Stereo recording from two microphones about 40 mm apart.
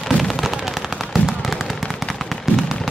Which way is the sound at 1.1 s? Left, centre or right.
Centre.